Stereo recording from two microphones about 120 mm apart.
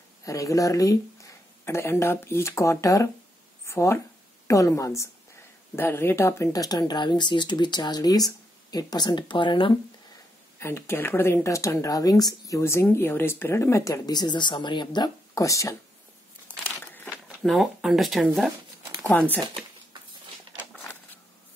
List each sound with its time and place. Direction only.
0.2 s a woman's voice: 25° left (ahead or behind); by 9.8 s 45° left (ahead or behind)
10.6 s speech: 20° left (ahead or behind)
16.4 s crumpling: 15° left (ahead or behind)
17.4 s speech: centre (ahead or behind)
20.7 s a sound: 15° left (ahead or behind)